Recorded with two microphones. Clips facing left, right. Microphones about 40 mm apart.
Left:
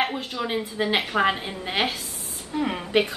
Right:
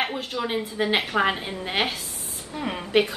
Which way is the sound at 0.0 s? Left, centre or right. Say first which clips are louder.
Left 1 dB; centre.